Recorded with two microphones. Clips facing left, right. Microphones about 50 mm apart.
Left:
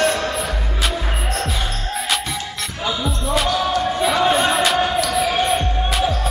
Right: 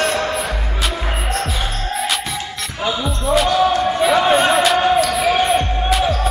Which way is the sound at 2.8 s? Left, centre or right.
Centre.